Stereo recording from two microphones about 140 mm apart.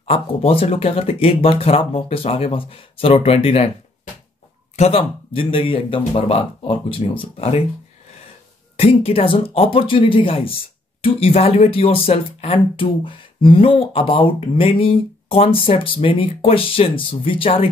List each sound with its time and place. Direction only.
0.0 s speech: 45° left (ahead or behind)
4.7 s speech: 45° left (ahead or behind)
8.7 s speech: 45° left (ahead or behind)